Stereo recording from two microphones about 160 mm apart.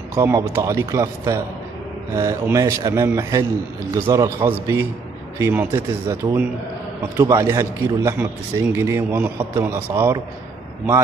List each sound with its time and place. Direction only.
0.1 s a man's voice: 15° right (ahead or behind)